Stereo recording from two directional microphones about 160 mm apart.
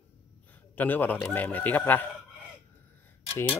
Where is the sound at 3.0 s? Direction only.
10° left (ahead or behind).